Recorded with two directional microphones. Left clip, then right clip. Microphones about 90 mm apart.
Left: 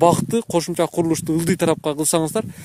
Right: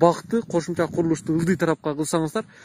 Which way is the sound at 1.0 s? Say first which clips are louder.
Left 3 dB; 85° left.